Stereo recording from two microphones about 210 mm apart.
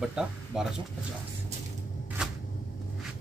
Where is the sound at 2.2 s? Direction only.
5° right (ahead or behind).